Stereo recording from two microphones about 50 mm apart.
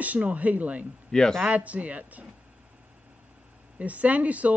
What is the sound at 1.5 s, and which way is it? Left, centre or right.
Speech, right.